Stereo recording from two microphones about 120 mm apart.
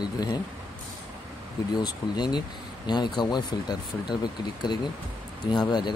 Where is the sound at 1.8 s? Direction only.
35° left (ahead or behind).